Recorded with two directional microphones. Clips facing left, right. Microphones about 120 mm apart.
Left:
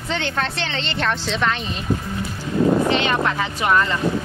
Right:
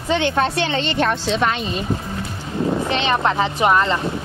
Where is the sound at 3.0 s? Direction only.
25° right (ahead or behind).